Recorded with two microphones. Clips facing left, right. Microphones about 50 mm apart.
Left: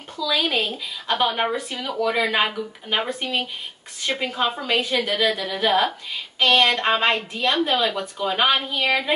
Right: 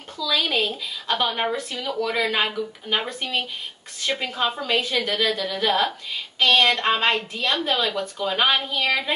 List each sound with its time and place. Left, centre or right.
0.2 s speech: centre
0.5 s speech: left
1.0 s speech: centre